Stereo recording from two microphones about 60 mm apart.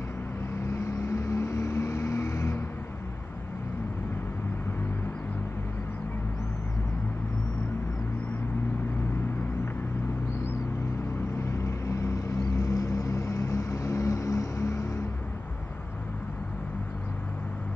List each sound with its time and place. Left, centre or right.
0.7 s vehicle: left
11.3 s vehicle: left